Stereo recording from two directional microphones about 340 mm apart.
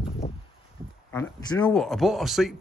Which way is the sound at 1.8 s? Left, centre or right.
Centre.